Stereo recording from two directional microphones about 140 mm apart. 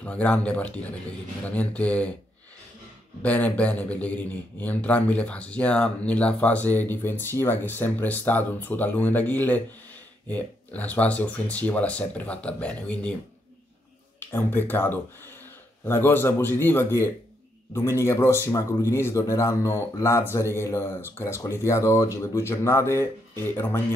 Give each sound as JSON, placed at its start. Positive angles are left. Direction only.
{"t": 0.0, "sound": "a man's voice", "side_deg": 10}
{"t": 3.2, "sound": "a man's voice", "side_deg": 10}
{"t": 14.2, "sound": "a man's voice", "side_deg": 15}